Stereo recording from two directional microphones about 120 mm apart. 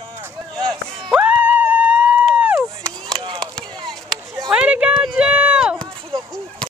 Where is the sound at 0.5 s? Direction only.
5° left (ahead or behind).